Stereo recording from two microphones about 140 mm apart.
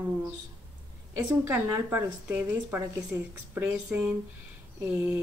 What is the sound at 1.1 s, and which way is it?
Speech, 15° right (ahead or behind).